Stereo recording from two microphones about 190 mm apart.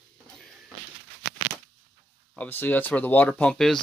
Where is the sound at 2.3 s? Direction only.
10° left (ahead or behind).